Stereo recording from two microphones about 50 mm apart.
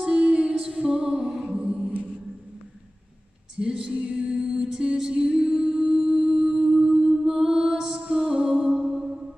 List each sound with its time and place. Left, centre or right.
0.0 s music: centre
3.5 s music: centre